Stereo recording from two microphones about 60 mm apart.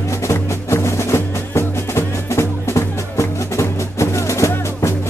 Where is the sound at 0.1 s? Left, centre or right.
Left.